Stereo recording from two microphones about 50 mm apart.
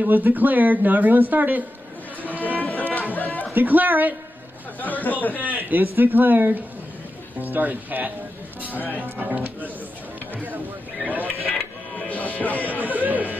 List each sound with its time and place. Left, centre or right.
0.0 s speech: right
2.6 s music: left
3.5 s speech: right
4.7 s speech: left
5.6 s speech: right
12.1 s music: left
12.6 s speech: right